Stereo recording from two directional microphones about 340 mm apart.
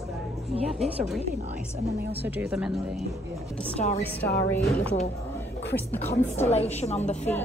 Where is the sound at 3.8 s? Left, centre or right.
Centre.